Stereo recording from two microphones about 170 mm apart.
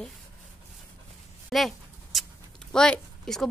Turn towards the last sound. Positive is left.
turn(degrees=5)  # may be behind; listen again after turning